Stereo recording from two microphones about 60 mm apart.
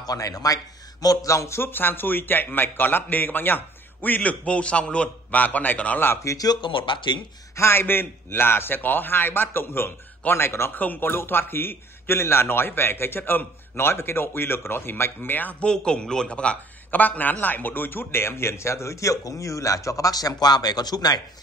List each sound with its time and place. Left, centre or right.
0.0 s speech: left
1.6 s a man's voice: left
6.2 s speech: left
7.5 s a man's voice: left
10.7 s a man's voice: left
15.6 s a man's voice: centre
16.9 s a man's voice: left